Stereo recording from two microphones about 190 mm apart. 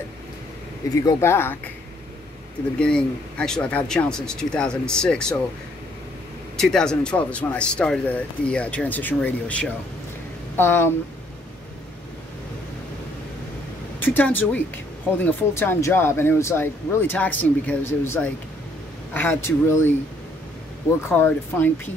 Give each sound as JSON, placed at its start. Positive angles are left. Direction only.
{"t": 0.9, "sound": "speech", "side_deg": 15}
{"t": 2.8, "sound": "speech", "side_deg": 5}
{"t": 6.5, "sound": "speech", "side_deg": 0}
{"t": 13.9, "sound": "speech", "side_deg": 10}
{"t": 21.1, "sound": "speech", "side_deg": 10}